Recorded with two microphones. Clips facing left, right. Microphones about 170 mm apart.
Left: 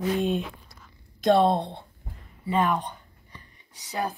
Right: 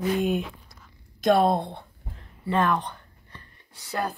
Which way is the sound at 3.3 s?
20° left (ahead or behind).